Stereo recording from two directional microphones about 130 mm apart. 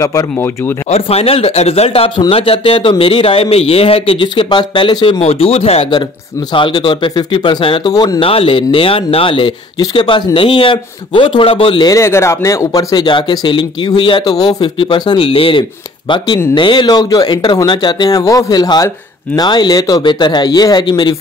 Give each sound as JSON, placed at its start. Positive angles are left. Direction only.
{"t": 0.0, "sound": "speech", "side_deg": 25}
{"t": 0.8, "sound": "speech", "side_deg": 55}
{"t": 6.5, "sound": "speech", "side_deg": 35}
{"t": 7.9, "sound": "speech", "side_deg": 30}
{"t": 8.2, "sound": "speech", "side_deg": 45}
{"t": 11.9, "sound": "speech", "side_deg": 20}